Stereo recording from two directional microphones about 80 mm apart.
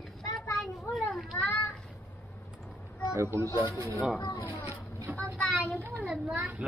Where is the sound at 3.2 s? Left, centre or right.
Right.